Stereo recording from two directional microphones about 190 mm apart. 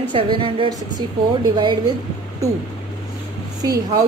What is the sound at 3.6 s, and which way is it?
Speech, 20° right (ahead or behind).